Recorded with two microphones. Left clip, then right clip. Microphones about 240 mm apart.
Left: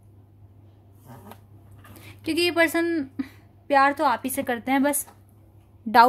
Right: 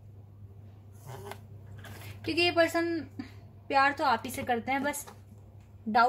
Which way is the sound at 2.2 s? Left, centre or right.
Left.